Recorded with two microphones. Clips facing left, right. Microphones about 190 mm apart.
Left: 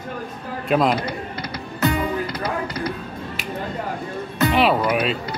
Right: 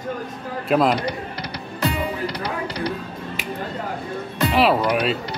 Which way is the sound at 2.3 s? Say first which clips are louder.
Left 1 dB; 70° right (ahead or behind).